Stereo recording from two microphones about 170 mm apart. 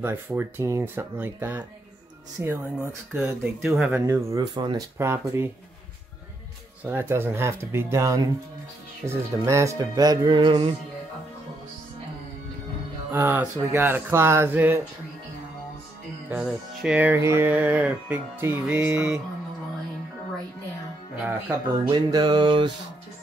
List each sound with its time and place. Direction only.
0.0 s music: 15° right (ahead or behind)
4.0 s speech: 15° right (ahead or behind)
4.9 s music: 15° right (ahead or behind)
6.8 s music: 10° right (ahead or behind)
9.0 s speech: 15° right (ahead or behind)
13.1 s music: 15° right (ahead or behind)
16.3 s music: 10° right (ahead or behind)
21.9 s speech: 25° right (ahead or behind)